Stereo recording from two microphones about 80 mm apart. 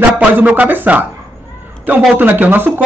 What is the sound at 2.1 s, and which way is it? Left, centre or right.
Speech, right.